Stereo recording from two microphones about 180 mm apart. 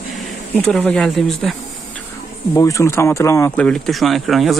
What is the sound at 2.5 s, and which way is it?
Speech, 15° left (ahead or behind).